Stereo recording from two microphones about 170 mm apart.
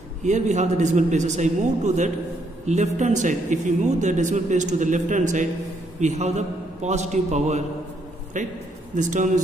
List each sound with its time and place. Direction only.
0.2 s speech: 45° right (ahead or behind)